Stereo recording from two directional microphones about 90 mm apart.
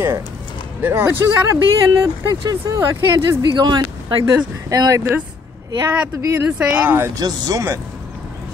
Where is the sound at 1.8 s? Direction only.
35° right (ahead or behind).